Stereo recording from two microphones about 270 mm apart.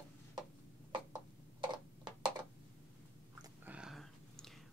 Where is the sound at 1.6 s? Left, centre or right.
Centre.